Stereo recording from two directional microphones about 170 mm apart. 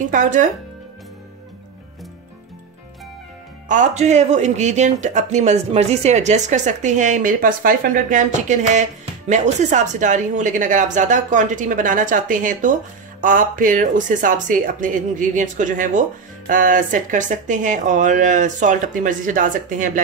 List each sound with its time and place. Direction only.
0.1 s speech: 50° right (ahead or behind)
3.6 s speech: 45° right (ahead or behind)